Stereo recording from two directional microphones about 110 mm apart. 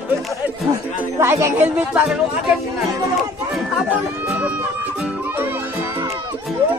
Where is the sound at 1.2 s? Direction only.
25° right (ahead or behind).